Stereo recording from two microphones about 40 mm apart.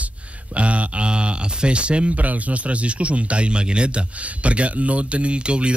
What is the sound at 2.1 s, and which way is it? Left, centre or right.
Speech, right.